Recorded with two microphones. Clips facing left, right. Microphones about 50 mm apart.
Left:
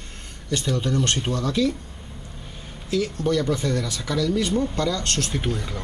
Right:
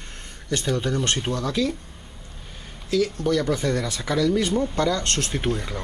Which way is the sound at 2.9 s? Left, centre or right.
Left.